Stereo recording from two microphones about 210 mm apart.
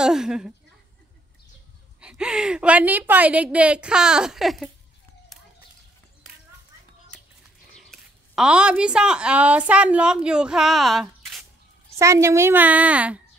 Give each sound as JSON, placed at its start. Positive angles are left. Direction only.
{"t": 0.0, "sound": "a woman's voice", "side_deg": -5}
{"t": 2.0, "sound": "a woman's voice", "side_deg": -5}
{"t": 7.7, "sound": "a woman's voice", "side_deg": 0}
{"t": 11.9, "sound": "a woman's voice", "side_deg": -15}